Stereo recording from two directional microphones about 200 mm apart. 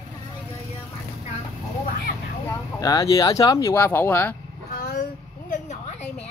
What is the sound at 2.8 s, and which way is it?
Speech, 15° left (ahead or behind).